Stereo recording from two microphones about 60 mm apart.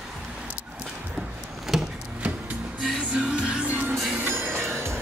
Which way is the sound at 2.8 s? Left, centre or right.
Centre.